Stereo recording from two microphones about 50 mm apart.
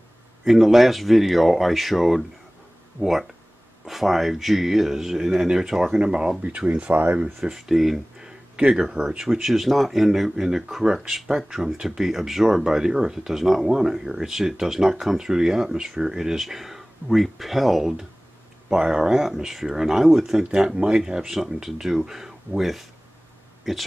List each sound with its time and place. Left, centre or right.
0.5 s speech: centre
6.4 s speech: right
7.4 s speech: centre
8.8 s speech: centre